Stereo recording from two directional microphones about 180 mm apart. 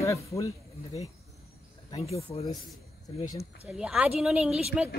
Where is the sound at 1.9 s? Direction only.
30° left (ahead or behind).